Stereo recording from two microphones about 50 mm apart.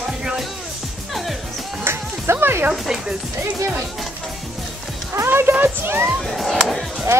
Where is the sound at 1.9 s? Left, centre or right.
Right.